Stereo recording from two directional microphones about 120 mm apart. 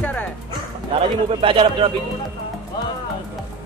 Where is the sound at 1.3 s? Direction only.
45° right (ahead or behind).